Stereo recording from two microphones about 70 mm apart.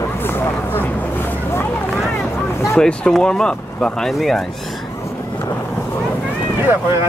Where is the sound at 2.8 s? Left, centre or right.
Centre.